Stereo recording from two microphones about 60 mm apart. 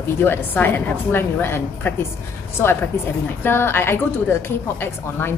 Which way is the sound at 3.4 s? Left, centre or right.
Left.